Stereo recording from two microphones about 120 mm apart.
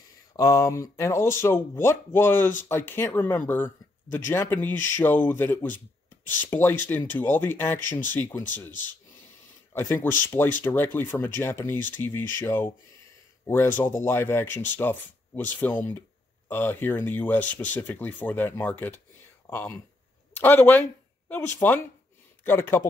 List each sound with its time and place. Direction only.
0.4 s speech: 25° left (ahead or behind)
9.9 s speech: 20° left (ahead or behind)
20.3 s speech: 15° left (ahead or behind)